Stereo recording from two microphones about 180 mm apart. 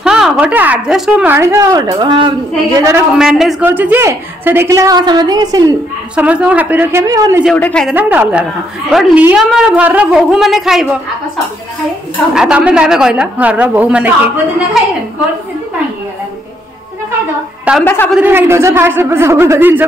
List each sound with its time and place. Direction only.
0.0 s a woman's voice: 5° right (ahead or behind); by 3.0 s 20° right (ahead or behind)
3.2 s a woman's voice: centre (ahead or behind); by 5.8 s 20° right (ahead or behind)
6.1 s a woman's voice: 5° right (ahead or behind)
7.4 s a woman's voice: 5° left (ahead or behind)
7.9 s a woman's voice: 10° right (ahead or behind)
12.4 s a woman's voice: 5° right (ahead or behind)
17.8 s a man's voice: 10° left (ahead or behind)
18.1 s a woman's voice: 10° right (ahead or behind)